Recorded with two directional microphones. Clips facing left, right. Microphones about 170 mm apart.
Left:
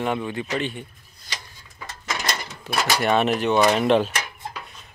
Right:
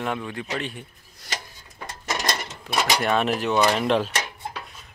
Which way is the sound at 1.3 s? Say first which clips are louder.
Right 4 dB; 40° right (ahead or behind).